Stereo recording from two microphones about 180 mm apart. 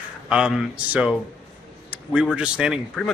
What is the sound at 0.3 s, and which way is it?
A man's voice, 5° right (ahead or behind).